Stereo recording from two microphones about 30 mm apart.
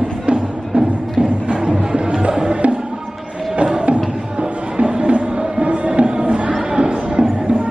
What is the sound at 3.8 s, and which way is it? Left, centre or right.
Music, right.